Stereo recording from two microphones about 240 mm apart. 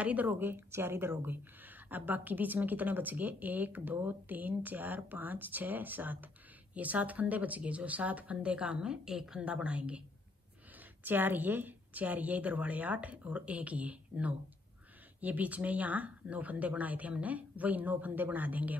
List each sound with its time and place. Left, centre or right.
0.0 s speech: centre
11.1 s speech: centre